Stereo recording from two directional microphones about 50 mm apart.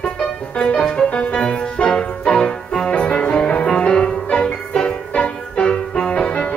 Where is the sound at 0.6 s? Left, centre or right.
Left.